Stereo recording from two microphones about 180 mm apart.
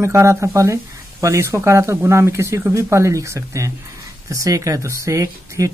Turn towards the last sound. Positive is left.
turn(degrees=-15)  # may be behind; listen again after turning